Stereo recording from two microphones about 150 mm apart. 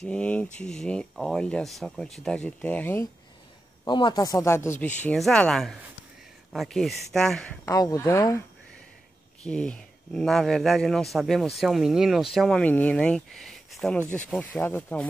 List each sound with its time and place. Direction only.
0.0 s speech: 10° left (ahead or behind)
3.8 s speech: 30° left (ahead or behind); by 7.5 s 5° left (ahead or behind)
7.6 s speech: 25° left (ahead or behind)
9.4 s speech: 5° left (ahead or behind)